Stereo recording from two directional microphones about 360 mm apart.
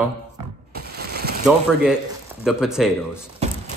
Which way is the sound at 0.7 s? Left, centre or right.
Right.